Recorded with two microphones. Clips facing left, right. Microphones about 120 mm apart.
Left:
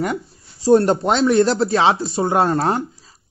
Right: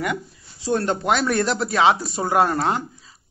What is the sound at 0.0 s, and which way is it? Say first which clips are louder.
Speech: left 3 dB; 35° left (ahead or behind).